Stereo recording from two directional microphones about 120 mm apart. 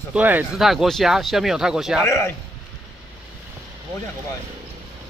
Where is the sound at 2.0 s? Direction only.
20° left (ahead or behind).